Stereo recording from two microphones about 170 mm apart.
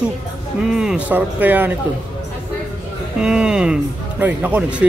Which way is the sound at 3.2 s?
5° right (ahead or behind).